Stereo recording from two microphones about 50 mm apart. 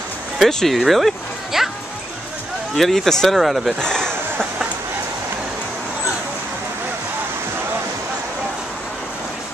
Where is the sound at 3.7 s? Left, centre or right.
Centre.